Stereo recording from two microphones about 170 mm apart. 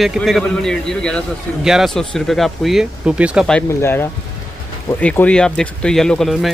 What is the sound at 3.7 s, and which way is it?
Speech, 15° left (ahead or behind).